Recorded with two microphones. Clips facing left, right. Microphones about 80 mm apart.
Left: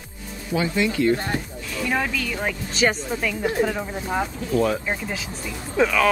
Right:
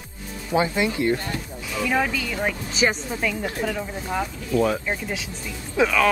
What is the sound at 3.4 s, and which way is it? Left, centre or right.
Speech, centre.